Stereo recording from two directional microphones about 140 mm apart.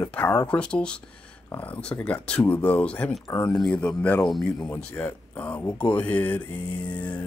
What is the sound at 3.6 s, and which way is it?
Speech, 10° left (ahead or behind).